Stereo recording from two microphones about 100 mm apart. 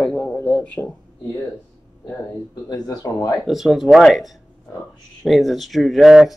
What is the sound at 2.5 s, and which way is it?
Speech, 40° left (ahead or behind).